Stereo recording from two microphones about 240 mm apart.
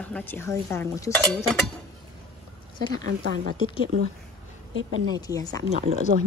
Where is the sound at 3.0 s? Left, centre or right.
Right.